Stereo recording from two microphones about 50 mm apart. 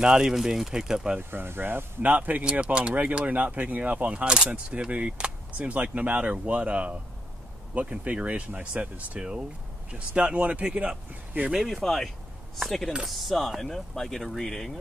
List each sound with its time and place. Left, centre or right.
0.0 s speech: centre
1.3 s speech: right
2.6 s speech: right
11.5 s speech: centre